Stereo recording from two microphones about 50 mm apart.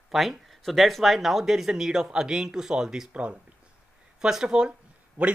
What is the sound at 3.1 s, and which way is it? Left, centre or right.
Speech, right.